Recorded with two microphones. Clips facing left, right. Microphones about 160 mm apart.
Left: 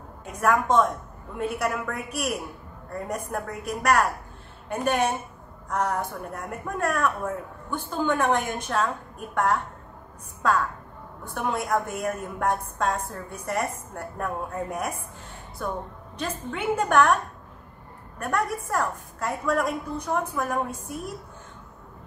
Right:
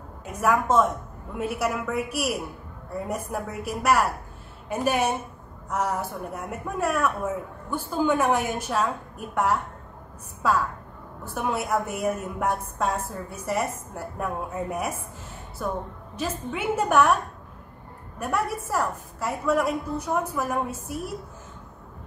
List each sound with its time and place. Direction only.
0.2 s a woman's voice: 5° right (ahead or behind)
18.2 s a woman's voice: 5° right (ahead or behind)